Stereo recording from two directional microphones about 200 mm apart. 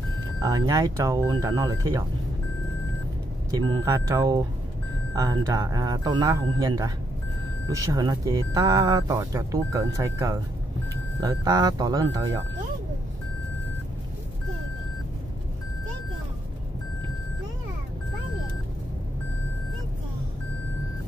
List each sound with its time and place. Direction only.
0.4 s speech: 20° right (ahead or behind)
3.5 s speech: 15° right (ahead or behind)